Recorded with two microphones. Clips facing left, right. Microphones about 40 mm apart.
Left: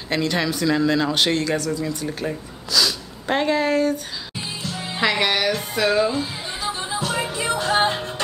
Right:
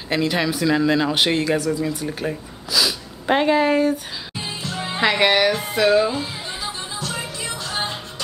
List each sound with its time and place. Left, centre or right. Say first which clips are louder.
0.1 s speech: right 1 dB; centre
5.0 s speech: right 3 dB; centre
5.8 s speech: right 2 dB; centre
6.8 s music: left 4 dB; centre